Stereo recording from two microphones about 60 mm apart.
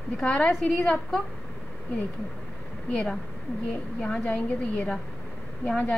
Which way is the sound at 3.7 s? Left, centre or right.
Left.